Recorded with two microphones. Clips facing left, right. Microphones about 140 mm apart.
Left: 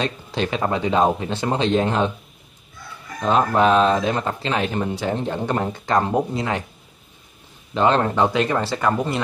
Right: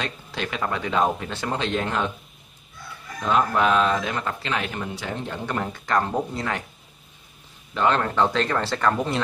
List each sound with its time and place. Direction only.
0.0 s speech: 25° left (ahead or behind)
3.3 s speech: 30° left (ahead or behind)
7.7 s speech: 25° left (ahead or behind); by 9.2 s 5° left (ahead or behind)